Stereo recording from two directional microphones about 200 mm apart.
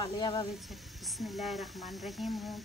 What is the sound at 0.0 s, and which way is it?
Speech, 25° left (ahead or behind).